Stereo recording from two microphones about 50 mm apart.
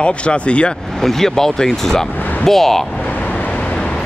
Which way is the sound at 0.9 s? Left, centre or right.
Centre.